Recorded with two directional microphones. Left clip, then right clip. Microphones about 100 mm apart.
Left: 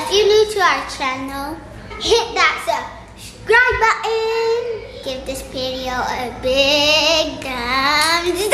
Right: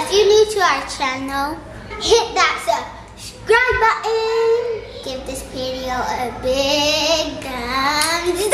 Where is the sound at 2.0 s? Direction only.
5° right (ahead or behind).